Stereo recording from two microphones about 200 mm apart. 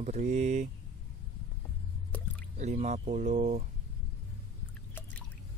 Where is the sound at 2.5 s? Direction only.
35° right (ahead or behind).